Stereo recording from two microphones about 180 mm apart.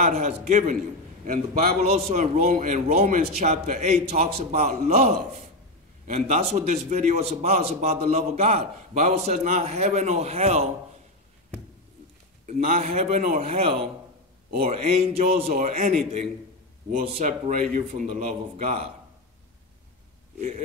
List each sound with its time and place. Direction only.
0.0 s a man's voice: 40° right (ahead or behind)
12.4 s a man's voice: 40° right (ahead or behind)
13.4 s a man's voice: 35° right (ahead or behind)
15.1 s a man's voice: 35° right (ahead or behind)
15.5 s a man's voice: 45° right (ahead or behind)
20.3 s speech: 45° right (ahead or behind)